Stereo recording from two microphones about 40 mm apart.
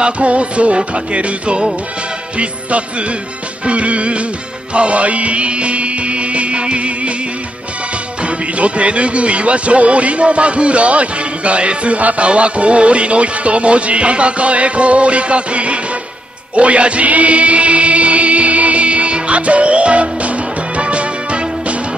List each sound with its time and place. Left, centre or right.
0.0 s speech: right
0.7 s music: right
2.3 s speech: right
4.7 s music: right
8.2 s speech: right
16.5 s music: right